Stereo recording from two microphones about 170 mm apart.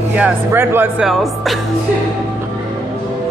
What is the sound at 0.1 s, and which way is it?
Speech, 10° right (ahead or behind).